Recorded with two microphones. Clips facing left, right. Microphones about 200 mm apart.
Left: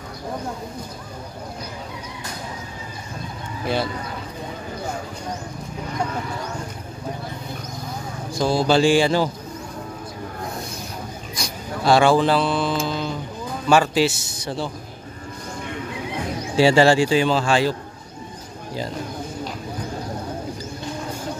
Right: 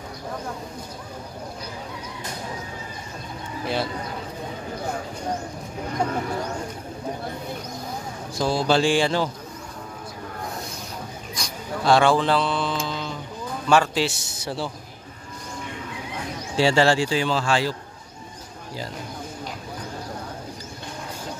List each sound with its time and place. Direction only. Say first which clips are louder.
8.4 s speech: left 3 dB; centre (ahead or behind)
11.3 s a sound: left 1 dB; 5° left (ahead or behind)
13.7 s a man's voice: left 3 dB; 5° left (ahead or behind)
16.5 s speech: left 4 dB; 10° left (ahead or behind)